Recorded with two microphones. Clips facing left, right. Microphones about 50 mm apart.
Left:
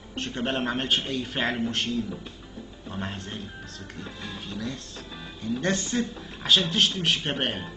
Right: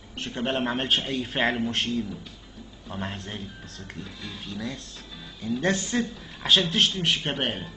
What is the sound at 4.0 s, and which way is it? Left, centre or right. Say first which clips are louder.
Music: left 2 dB; left.